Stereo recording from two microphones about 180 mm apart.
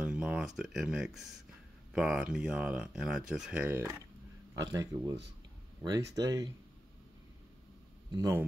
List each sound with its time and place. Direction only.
0.0 s a sound: 5° right (ahead or behind)
2.0 s speech: 5° right (ahead or behind); by 6.5 s 20° right (ahead or behind)
8.1 s speech: 15° right (ahead or behind)